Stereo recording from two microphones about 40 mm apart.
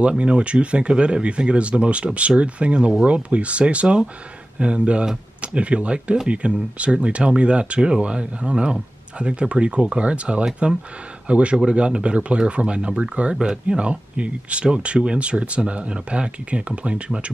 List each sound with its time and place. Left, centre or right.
0.2 s speech: right
10.4 s speech: centre
11.2 s speech: right